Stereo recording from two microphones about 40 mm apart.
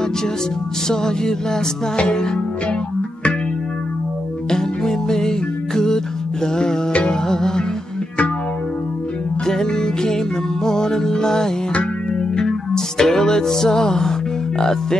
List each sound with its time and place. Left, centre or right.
0.8 s music: centre
4.5 s music: centre
6.9 s music: left
7.2 s music: centre
9.5 s music: centre